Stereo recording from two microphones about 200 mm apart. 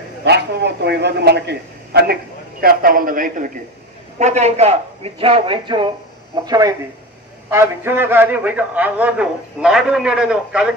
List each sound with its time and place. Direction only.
0.2 s a man's voice: 55° right (ahead or behind); by 10.7 s 5° right (ahead or behind)